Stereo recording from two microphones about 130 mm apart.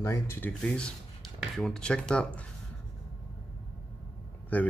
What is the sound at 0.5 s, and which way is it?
Speech, 5° left (ahead or behind).